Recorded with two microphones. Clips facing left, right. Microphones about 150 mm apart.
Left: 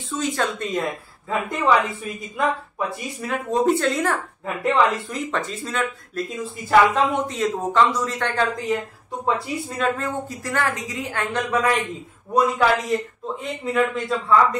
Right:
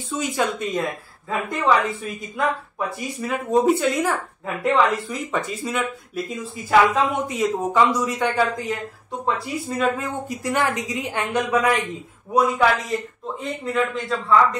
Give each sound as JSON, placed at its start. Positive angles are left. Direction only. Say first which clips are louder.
{"t": 0.1, "sound": "a woman's voice", "louder": "right 1 dB", "side_deg": 0}
{"t": 10.2, "sound": "a woman's voice", "louder": "right 2 dB", "side_deg": -20}
{"t": 11.5, "sound": "a woman's voice", "louder": "even", "side_deg": 0}